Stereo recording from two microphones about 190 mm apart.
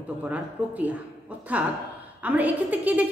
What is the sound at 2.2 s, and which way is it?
Speech, 10° right (ahead or behind).